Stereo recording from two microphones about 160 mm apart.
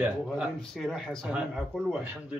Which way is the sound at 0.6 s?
5° left (ahead or behind).